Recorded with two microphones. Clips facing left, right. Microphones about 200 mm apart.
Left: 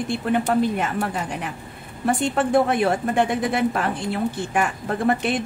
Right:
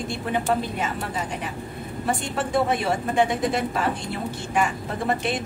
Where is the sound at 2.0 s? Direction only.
55° left (ahead or behind).